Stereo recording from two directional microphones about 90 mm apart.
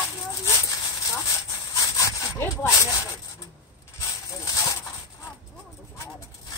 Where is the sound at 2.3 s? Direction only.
30° left (ahead or behind).